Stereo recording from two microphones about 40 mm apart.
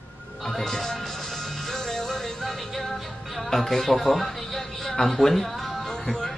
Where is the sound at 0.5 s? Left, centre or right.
Centre.